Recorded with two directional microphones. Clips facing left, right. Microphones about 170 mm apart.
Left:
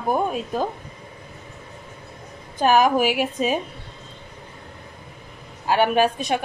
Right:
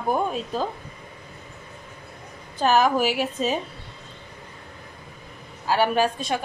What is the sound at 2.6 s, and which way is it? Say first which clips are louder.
Speech: left 2 dB; 15° left (ahead or behind).